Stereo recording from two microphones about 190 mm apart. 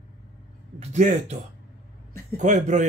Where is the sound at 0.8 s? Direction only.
40° right (ahead or behind).